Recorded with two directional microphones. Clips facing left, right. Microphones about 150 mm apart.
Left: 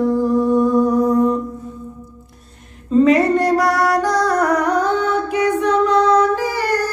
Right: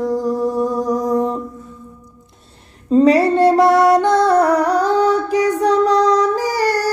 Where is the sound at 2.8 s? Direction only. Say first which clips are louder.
Right 1 dB; 30° right (ahead or behind).